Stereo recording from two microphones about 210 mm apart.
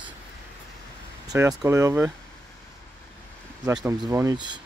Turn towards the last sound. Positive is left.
turn(degrees=-20)  # may be behind; listen again after turning